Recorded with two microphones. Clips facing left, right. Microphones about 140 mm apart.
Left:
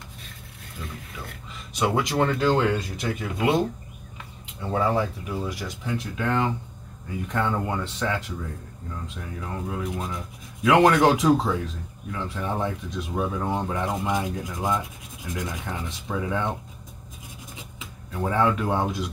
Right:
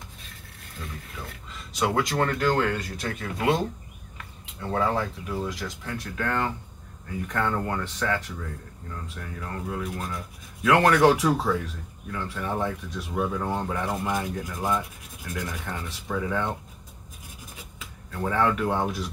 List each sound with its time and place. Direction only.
1.8 s rub: 15° left (ahead or behind)
17.7 s speech: 15° left (ahead or behind)